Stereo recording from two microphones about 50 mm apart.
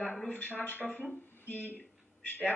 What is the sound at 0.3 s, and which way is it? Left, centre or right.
Speech, left.